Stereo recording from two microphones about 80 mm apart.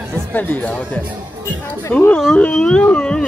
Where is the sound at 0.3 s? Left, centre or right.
Left.